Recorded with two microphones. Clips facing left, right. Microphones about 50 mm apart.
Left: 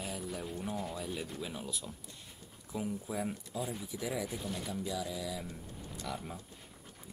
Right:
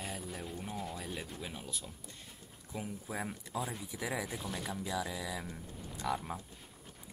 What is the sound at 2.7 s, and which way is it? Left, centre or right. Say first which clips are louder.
Speech: left 4 dB; centre.